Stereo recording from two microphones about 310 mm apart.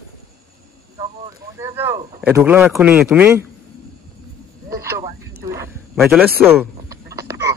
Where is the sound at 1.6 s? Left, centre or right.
Centre.